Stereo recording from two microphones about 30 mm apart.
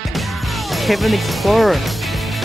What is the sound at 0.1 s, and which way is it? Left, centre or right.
Music, centre.